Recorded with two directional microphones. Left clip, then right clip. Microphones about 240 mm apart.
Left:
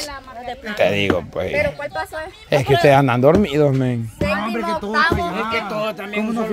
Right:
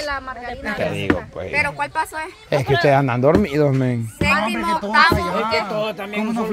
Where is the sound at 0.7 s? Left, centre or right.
Left.